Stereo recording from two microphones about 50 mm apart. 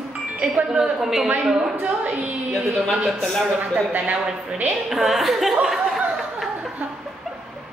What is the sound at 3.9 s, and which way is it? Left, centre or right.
Speech, right.